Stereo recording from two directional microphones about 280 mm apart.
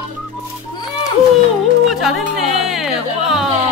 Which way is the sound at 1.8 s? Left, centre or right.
Centre.